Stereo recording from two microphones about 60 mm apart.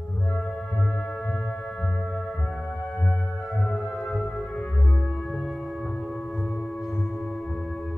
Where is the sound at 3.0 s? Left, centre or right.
Left.